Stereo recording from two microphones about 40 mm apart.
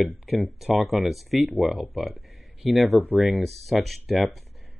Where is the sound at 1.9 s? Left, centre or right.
Centre.